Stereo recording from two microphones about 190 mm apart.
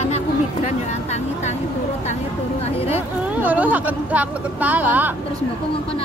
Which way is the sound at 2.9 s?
10° right (ahead or behind).